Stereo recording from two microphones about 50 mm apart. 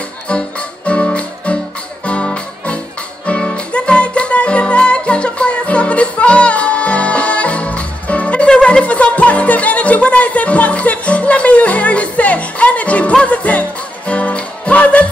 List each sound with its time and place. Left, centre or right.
0.3 s music: left